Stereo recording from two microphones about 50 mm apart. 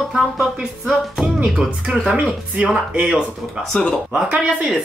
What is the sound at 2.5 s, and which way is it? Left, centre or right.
Speech, right.